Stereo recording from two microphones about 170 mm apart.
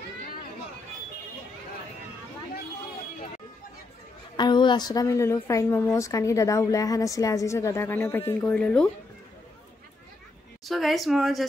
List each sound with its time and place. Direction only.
4.4 s a woman's voice: 25° left (ahead or behind); by 8.9 s 5° left (ahead or behind)
10.7 s a woman's voice: centre (ahead or behind)